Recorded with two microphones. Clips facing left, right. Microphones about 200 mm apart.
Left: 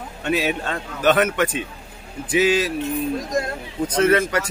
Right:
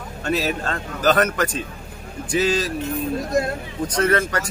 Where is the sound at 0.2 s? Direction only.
5° left (ahead or behind).